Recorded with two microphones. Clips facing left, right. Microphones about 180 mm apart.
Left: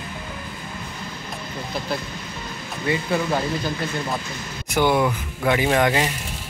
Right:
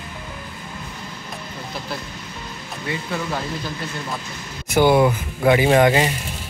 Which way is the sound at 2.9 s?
Centre (ahead or behind).